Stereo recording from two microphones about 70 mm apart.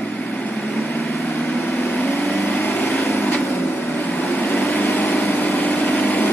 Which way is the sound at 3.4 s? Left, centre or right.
Left.